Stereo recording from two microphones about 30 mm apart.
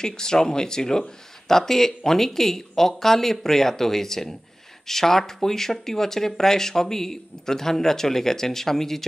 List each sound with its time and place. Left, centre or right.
0.0 s speech: left